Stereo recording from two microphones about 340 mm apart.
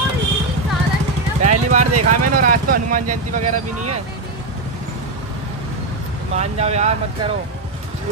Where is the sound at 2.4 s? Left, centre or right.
Right.